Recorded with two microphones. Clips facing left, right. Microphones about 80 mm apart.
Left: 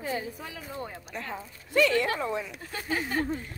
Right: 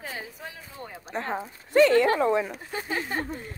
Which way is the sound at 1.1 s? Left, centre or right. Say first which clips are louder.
Right 6 dB; right.